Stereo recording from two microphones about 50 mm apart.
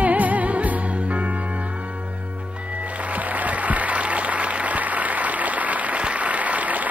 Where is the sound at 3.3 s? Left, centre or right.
Right.